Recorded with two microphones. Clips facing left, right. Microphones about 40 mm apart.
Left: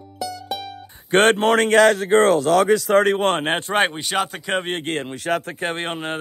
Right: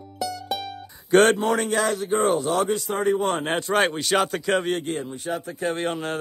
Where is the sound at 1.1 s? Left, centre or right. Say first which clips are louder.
Left 2 dB; left.